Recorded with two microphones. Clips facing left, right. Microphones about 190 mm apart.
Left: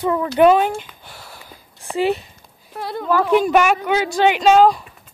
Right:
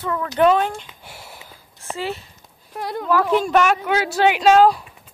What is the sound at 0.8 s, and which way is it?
Sniff, 25° right (ahead or behind).